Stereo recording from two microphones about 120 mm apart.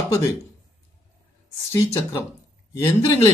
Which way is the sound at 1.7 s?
25° left (ahead or behind).